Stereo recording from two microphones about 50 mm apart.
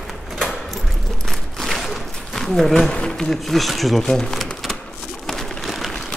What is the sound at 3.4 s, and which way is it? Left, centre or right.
Speech, centre.